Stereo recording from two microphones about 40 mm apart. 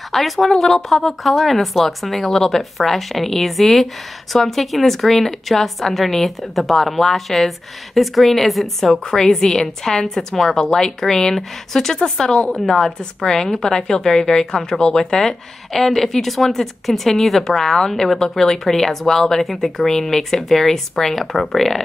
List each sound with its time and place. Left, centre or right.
0.1 s speech: centre
9.1 s speech: centre